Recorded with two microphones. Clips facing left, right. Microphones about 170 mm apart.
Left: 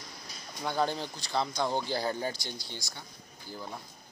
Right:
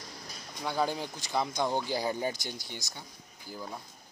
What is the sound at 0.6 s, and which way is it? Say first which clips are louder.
Speech: even; 5° right (ahead or behind).